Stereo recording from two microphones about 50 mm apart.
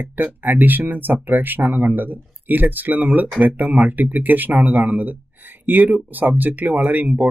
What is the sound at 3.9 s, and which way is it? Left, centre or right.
Speech, right.